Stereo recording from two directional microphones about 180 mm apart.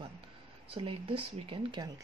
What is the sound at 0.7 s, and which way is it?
Speech, 30° right (ahead or behind).